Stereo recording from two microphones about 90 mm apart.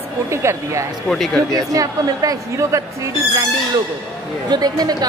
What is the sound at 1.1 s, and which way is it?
Speech, 5° left (ahead or behind).